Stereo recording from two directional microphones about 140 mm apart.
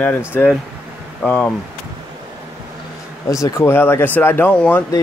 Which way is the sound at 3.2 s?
25° left (ahead or behind).